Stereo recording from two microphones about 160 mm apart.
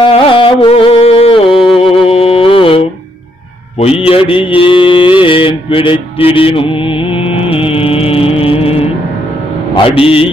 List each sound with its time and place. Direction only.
0.0 s music: 35° left (ahead or behind)
1.5 s music: centre (ahead or behind)
2.0 s a sound: 35° left (ahead or behind)
3.8 s mantra: 35° left (ahead or behind)
9.8 s mantra: 35° left (ahead or behind)